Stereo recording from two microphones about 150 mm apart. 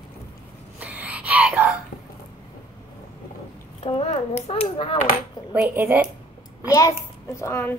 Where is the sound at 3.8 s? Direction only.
40° left (ahead or behind).